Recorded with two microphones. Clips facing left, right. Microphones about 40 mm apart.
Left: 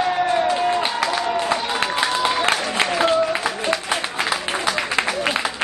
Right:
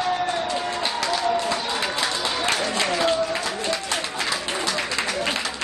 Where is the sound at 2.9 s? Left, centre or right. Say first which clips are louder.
Left 5 dB; left.